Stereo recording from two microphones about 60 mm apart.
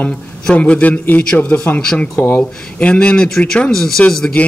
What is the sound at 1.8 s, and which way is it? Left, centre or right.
Speech, centre.